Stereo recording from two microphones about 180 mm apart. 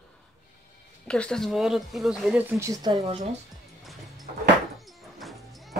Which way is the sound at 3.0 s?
30° right (ahead or behind).